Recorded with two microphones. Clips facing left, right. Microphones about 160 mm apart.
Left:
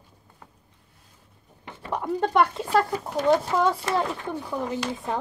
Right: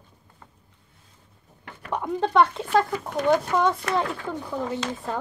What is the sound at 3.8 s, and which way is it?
Speech, 20° left (ahead or behind).